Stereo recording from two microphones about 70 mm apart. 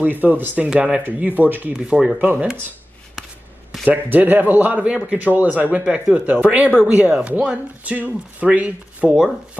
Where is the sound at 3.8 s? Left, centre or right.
Right.